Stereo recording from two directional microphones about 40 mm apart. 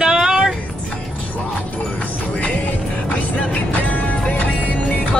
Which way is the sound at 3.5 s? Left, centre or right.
Left.